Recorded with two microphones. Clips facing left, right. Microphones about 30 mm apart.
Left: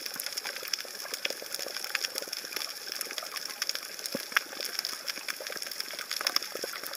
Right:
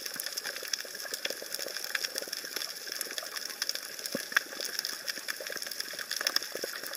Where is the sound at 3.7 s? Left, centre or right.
Left.